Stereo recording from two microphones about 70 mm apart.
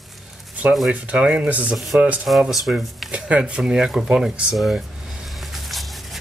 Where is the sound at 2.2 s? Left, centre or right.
Centre.